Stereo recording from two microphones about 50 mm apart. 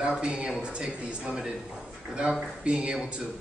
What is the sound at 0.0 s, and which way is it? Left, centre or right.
A man's voice, right.